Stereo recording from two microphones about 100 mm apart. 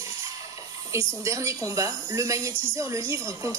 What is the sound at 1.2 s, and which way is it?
Speech, 30° right (ahead or behind).